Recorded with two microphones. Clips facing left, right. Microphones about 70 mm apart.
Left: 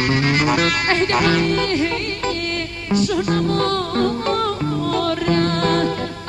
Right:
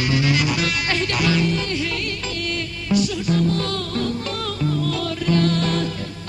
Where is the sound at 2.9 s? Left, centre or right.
Left.